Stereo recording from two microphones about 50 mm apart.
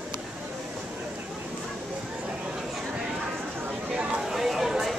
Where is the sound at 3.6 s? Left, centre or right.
Centre.